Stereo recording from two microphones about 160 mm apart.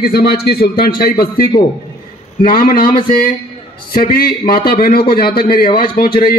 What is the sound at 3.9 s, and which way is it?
A man's voice, 65° left (ahead or behind).